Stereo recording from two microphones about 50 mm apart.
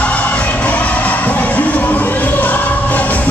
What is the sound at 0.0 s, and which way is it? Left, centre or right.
Music, left.